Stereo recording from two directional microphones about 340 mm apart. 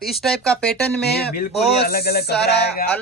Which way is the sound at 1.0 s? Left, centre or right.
Left.